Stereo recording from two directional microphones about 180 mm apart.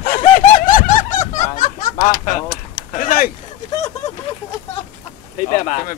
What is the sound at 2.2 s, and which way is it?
Speech, 50° left (ahead or behind).